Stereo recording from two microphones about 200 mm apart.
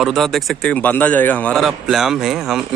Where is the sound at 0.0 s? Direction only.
Centre (ahead or behind).